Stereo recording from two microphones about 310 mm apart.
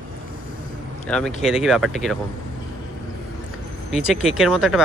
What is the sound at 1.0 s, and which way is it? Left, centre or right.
Speech, centre.